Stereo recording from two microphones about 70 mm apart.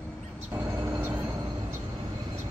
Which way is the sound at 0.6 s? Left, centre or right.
Right.